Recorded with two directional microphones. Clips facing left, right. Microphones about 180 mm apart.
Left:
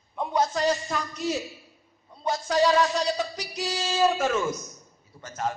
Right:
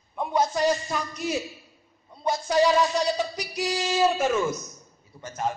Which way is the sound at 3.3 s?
15° right (ahead or behind).